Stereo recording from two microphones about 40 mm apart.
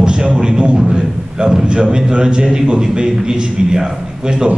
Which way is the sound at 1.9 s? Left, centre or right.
Centre.